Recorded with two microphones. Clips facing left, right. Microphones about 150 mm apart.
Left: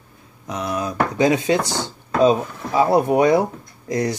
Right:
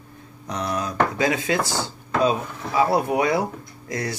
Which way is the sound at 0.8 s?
20° left (ahead or behind).